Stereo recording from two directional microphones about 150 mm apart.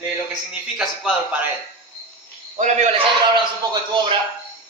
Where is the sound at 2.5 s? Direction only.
50° right (ahead or behind).